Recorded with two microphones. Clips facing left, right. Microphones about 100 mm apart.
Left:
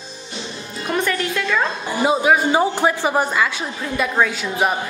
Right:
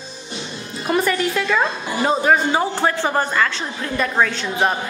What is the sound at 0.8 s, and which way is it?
Speech, 5° right (ahead or behind).